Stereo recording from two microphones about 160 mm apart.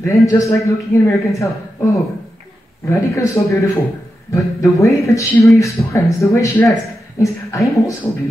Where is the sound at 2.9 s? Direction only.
20° left (ahead or behind).